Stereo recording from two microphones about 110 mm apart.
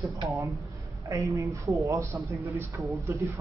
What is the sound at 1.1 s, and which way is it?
Speech, 30° right (ahead or behind).